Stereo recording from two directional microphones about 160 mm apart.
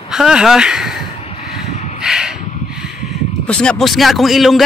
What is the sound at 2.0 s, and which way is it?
Speech, 5° right (ahead or behind).